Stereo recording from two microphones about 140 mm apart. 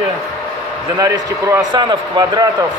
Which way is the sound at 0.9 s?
25° right (ahead or behind).